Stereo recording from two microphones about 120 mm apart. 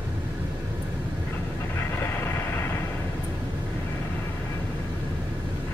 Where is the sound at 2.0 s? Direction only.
20° left (ahead or behind).